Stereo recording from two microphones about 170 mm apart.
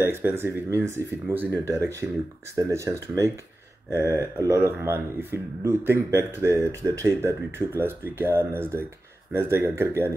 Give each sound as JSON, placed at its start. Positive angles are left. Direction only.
{"t": 0.0, "sound": "speech", "side_deg": -15}